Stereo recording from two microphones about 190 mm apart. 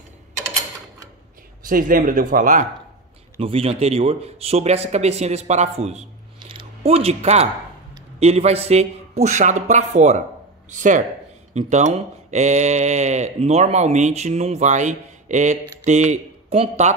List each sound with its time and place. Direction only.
1.7 s speech: 45° right (ahead or behind)
3.3 s speech: 30° right (ahead or behind)